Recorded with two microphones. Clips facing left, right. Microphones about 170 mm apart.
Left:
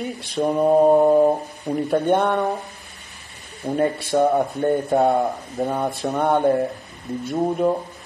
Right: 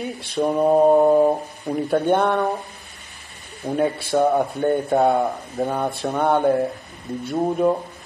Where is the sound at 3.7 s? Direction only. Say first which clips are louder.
Even; centre (ahead or behind).